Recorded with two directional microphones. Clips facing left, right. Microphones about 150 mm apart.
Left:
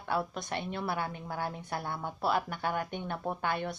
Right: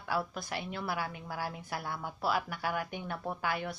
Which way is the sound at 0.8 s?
25° left (ahead or behind).